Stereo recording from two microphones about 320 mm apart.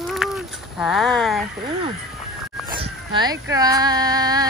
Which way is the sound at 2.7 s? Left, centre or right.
Centre.